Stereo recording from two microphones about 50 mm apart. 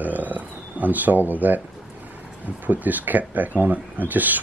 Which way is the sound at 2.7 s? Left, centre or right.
Right.